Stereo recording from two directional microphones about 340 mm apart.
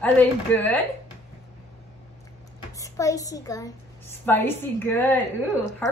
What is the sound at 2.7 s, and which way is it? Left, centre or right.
A child's voice, centre.